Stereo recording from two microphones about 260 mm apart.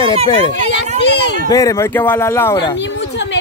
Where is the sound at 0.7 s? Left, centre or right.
Left.